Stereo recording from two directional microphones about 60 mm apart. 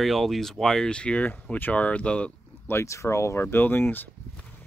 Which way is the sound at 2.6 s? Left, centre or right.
Left.